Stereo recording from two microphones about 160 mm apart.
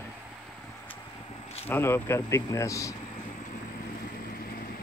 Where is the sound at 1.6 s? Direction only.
15° left (ahead or behind).